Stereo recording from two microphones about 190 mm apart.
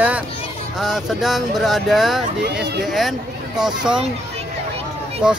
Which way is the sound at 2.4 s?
60° right (ahead or behind).